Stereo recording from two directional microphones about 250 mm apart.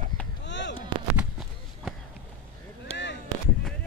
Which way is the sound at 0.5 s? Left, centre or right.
Left.